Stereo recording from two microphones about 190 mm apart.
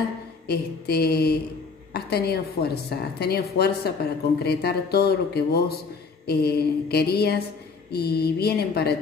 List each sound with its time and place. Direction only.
0.5 s a woman's voice: 55° left (ahead or behind)